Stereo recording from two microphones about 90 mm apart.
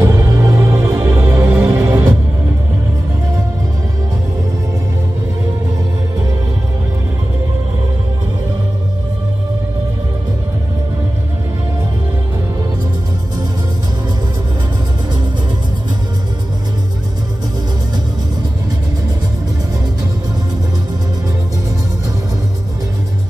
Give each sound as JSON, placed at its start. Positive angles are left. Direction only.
{"t": 0.0, "sound": "music", "side_deg": -30}